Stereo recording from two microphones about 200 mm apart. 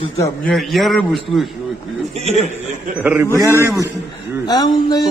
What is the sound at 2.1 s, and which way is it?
Speech, 30° right (ahead or behind).